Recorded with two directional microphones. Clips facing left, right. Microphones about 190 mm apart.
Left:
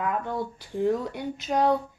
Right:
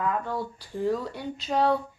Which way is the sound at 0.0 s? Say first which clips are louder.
Even; 15° left (ahead or behind).